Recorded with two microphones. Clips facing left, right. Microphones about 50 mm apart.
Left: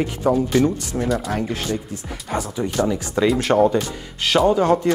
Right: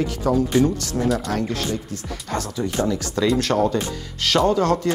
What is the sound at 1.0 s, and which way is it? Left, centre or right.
Speech, centre.